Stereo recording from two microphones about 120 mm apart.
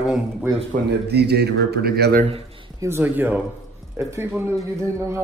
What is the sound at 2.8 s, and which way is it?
A man's voice, 20° right (ahead or behind).